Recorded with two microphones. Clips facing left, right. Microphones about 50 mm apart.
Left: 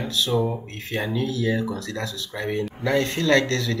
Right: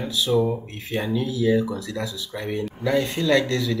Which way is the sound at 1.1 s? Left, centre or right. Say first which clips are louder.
Right 4 dB; centre.